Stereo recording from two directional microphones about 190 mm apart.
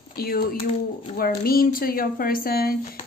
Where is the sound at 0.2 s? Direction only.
50° left (ahead or behind).